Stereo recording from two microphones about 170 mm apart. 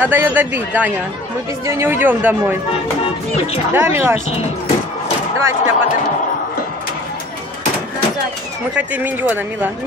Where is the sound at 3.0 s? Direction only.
35° left (ahead or behind).